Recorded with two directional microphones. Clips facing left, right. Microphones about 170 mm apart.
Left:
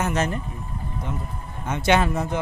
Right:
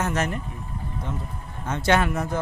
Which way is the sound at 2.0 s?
25° left (ahead or behind).